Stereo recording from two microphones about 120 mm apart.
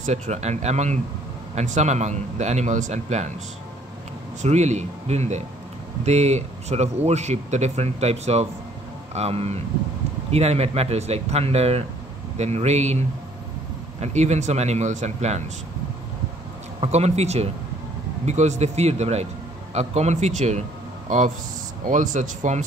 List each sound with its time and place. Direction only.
0.0 s a man's voice: 70° right (ahead or behind)
4.4 s a man's voice: 75° right (ahead or behind)
14.0 s a man's voice: 70° right (ahead or behind)
16.8 s speech: 65° right (ahead or behind)
18.2 s a man's voice: 75° right (ahead or behind)
21.1 s speech: 90° right